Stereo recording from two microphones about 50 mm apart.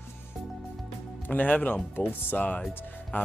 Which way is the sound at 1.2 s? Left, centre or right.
Left.